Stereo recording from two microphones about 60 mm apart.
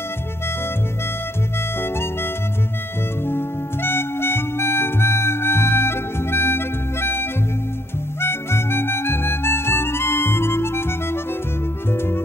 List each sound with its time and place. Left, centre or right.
1.8 s harmonica: left
3.3 s music: left
8.2 s harmonica: left
11.9 s music: left